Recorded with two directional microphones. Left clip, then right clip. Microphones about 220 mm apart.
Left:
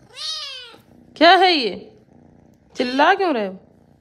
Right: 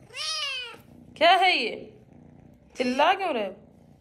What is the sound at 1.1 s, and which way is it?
Speech, 45° left (ahead or behind).